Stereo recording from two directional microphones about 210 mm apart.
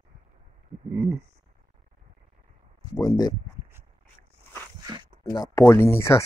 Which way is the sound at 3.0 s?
15° left (ahead or behind).